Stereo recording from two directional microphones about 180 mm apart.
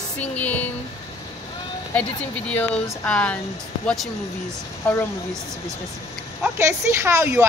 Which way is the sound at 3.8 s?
Centre (ahead or behind).